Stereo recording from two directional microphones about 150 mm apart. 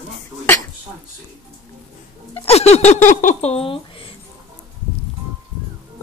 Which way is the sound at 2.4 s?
45° left (ahead or behind).